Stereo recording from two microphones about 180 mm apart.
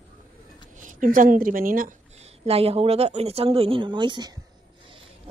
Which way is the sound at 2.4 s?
35° right (ahead or behind).